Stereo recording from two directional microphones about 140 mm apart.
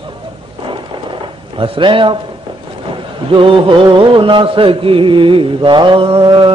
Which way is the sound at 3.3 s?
40° right (ahead or behind).